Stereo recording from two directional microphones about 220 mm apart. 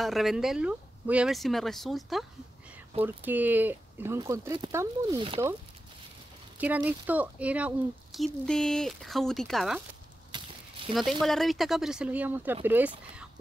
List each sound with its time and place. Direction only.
0.0 s speech: centre (ahead or behind); by 5.4 s 20° right (ahead or behind)
6.6 s speech: 5° right (ahead or behind)
10.3 s a sound: 20° right (ahead or behind)
10.9 s speech: centre (ahead or behind)